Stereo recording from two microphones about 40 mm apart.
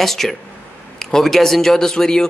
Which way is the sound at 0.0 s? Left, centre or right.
Centre.